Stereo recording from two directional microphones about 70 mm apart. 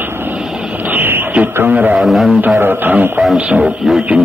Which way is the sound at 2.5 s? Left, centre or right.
Right.